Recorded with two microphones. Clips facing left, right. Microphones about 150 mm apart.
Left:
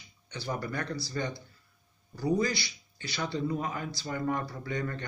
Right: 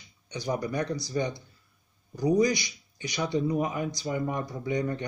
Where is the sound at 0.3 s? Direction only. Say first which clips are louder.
Right 5 dB; 15° right (ahead or behind).